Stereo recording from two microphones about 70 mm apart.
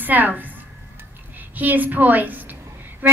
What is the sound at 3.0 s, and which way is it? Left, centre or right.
Music, right.